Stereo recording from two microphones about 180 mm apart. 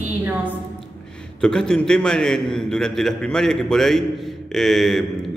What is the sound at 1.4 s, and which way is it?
A man's voice, 5° left (ahead or behind).